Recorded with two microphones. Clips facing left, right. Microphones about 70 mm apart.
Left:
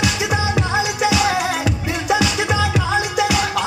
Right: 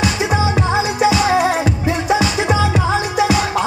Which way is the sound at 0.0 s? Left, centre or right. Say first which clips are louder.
Right 3 dB; right.